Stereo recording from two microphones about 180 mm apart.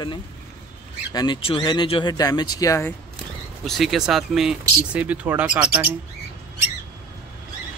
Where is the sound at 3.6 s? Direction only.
Centre (ahead or behind).